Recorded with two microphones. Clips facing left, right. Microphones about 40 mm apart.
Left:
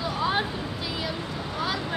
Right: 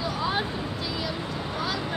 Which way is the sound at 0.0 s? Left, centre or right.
Centre.